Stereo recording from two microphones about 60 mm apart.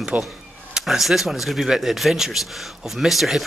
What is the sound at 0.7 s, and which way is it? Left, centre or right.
Speech, centre.